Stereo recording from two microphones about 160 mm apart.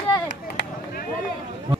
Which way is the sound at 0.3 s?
90° left.